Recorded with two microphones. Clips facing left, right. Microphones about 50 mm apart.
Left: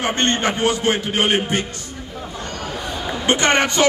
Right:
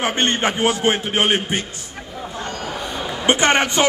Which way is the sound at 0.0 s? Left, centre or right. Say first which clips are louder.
Even; centre.